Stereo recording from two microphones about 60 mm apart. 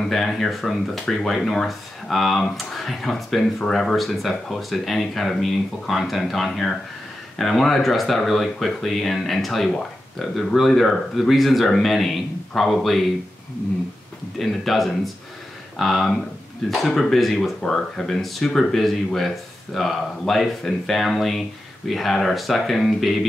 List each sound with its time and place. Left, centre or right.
0.0 s speech: centre
14.4 s speech: centre